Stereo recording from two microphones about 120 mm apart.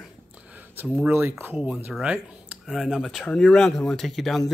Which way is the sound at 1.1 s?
20° right (ahead or behind).